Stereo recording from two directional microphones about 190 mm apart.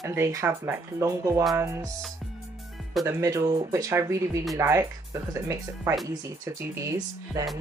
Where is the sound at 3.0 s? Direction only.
15° right (ahead or behind).